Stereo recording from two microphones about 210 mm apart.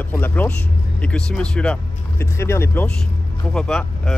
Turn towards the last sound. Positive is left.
turn(degrees=5)  # may be behind; listen again after turning